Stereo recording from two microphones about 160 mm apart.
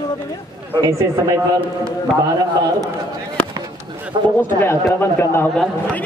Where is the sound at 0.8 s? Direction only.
20° right (ahead or behind).